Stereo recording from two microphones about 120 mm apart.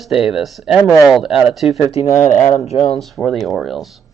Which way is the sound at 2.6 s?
60° left (ahead or behind).